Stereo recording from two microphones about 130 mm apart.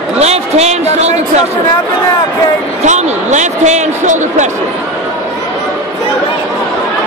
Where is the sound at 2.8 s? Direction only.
65° right (ahead or behind).